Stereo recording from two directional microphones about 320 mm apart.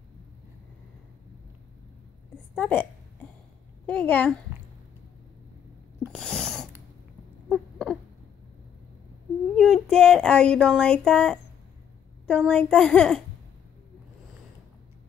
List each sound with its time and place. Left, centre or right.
2.5 s a child's voice: centre
6.1 s a sound: centre
9.6 s a child's voice: centre